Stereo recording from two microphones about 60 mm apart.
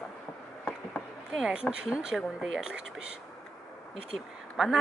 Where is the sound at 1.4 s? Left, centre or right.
Centre.